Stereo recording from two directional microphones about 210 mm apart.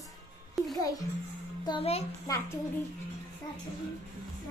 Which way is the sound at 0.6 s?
Centre (ahead or behind).